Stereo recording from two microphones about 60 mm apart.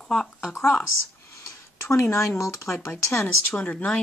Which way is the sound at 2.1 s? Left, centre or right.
Left.